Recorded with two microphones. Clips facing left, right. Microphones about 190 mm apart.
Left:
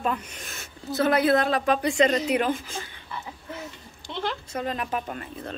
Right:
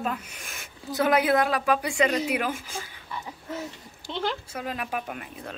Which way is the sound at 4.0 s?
10° right (ahead or behind).